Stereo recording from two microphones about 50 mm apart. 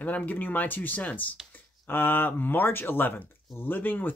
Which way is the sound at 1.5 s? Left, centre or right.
Left.